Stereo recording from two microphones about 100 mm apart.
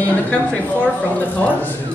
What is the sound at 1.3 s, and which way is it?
Speech, 15° left (ahead or behind).